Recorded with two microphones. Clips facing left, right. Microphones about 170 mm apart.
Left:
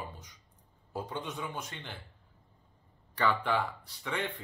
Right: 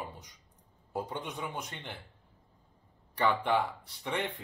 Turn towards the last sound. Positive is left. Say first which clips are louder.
# right 1 dB
turn(degrees=-15)  # may be behind; listen again after turning